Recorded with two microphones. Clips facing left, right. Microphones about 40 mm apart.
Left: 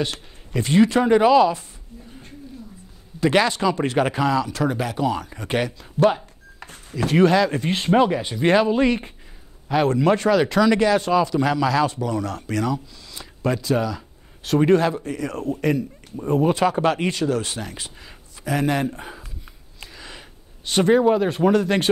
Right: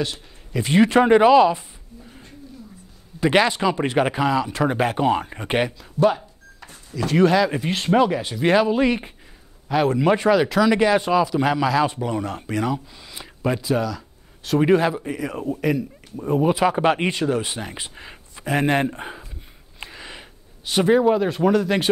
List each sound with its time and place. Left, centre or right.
0.5 s speech: centre
0.8 s speech: right
1.2 s speech: centre
3.2 s speech: centre
4.7 s speech: right
6.6 s cash register: left
7.1 s speech: centre
7.3 s speech: centre
7.7 s a man's voice: centre
9.9 s speech: centre
13.7 s a sound: centre
14.6 s speech: centre
19.8 s a sound: right
20.6 s speech: centre